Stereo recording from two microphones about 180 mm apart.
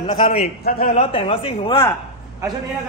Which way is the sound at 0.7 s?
55° left (ahead or behind).